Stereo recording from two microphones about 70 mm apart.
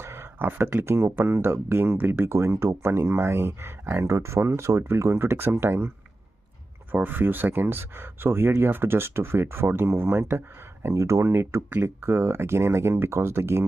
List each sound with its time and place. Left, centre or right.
0.0 s speech: right
6.9 s speech: right